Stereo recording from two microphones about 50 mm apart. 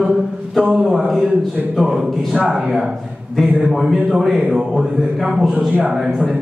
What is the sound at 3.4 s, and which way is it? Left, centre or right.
Speech, right.